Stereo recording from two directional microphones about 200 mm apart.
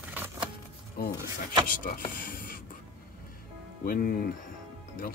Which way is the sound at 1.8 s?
45° left (ahead or behind).